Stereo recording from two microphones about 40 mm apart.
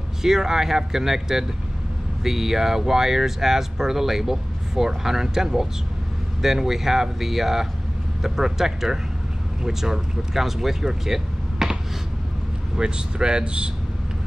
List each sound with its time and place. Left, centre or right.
0.2 s speech: centre
11.6 s finger snapping: centre
12.7 s speech: right